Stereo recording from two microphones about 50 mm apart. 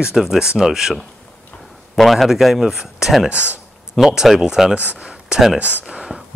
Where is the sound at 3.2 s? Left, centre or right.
Right.